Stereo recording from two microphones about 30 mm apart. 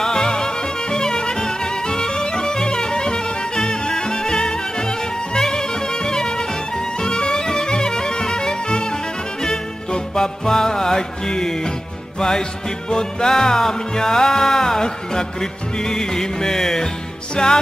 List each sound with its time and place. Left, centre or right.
0.2 s music: left
13.3 s music: centre
17.4 s music: left